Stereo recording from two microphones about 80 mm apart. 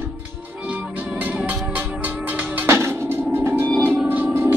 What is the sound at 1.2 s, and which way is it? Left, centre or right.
Music, right.